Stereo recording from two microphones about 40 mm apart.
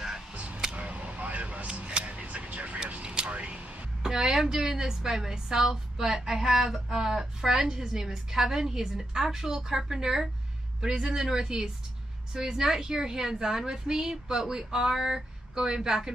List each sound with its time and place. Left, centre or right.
0.3 s a sound: right
2.9 s vehicle: right
4.0 s a woman's voice: centre